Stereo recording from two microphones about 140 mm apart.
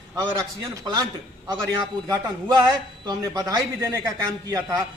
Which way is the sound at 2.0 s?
25° right (ahead or behind).